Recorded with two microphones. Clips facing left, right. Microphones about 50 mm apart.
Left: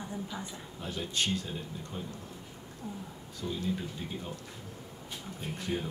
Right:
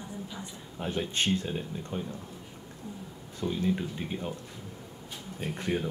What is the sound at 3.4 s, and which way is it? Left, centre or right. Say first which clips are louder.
Speech: right 5 dB; right.